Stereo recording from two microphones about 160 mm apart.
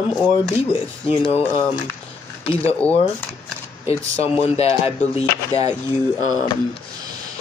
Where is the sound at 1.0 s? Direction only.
35° left (ahead or behind).